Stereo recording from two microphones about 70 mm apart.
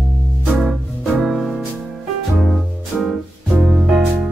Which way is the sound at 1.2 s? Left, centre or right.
Centre.